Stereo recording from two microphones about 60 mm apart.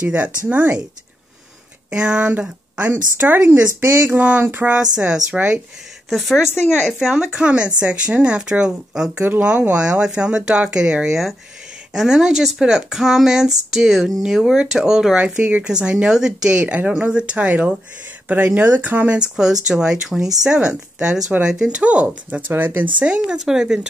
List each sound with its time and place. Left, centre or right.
0.0 s speech: right
1.9 s speech: centre
4.9 s speech: centre
6.0 s speech: centre
6.4 s speech: left
7.0 s speech: centre; by 19.1 s right
19.1 s speech: centre; by 23.0 s right
23.0 s speech: centre